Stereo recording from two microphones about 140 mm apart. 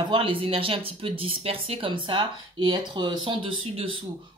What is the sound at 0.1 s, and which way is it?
Speech, 40° right (ahead or behind).